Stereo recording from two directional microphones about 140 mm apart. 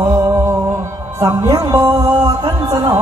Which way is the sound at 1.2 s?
25° right (ahead or behind).